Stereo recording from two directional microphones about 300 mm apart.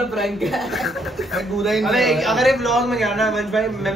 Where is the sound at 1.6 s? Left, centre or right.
Centre.